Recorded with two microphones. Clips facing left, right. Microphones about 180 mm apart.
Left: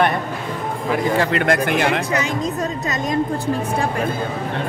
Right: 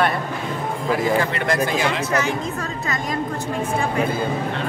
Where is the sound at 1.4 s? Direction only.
60° left (ahead or behind).